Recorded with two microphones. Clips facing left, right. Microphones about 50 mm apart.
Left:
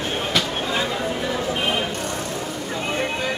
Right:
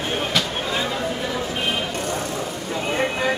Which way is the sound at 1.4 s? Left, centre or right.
Centre.